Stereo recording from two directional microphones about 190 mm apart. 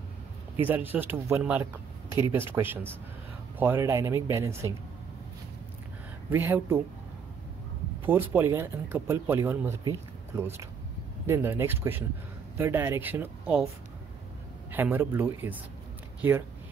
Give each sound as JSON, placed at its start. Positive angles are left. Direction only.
{"t": 0.6, "sound": "speech", "side_deg": -10}
{"t": 2.0, "sound": "speech", "side_deg": 25}
{"t": 2.3, "sound": "speech", "side_deg": -10}
{"t": 6.3, "sound": "speech", "side_deg": -10}
{"t": 8.0, "sound": "speech", "side_deg": -10}
{"t": 14.7, "sound": "speech", "side_deg": -10}